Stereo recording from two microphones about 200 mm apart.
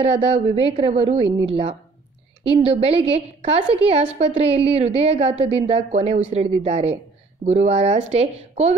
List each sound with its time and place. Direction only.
0.0 s a woman's voice: 30° right (ahead or behind)